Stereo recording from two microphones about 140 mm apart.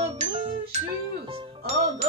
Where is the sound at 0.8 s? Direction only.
40° right (ahead or behind).